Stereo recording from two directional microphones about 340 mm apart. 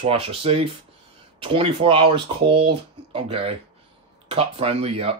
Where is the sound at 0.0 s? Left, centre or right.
Centre.